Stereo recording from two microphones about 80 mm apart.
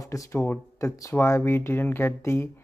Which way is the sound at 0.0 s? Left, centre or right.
Left.